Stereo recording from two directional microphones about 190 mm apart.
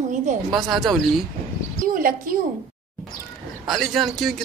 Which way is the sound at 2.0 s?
50° right (ahead or behind).